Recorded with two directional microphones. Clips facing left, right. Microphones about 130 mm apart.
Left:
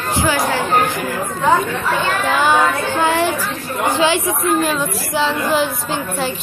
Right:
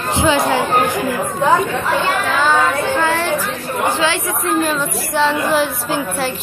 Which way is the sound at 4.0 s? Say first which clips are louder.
Left 3 dB; 15° left (ahead or behind).